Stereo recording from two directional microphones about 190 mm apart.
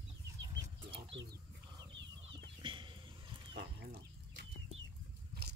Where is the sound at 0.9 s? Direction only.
60° right (ahead or behind).